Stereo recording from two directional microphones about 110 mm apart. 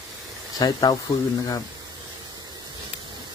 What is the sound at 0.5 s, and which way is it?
Speech, 35° left (ahead or behind).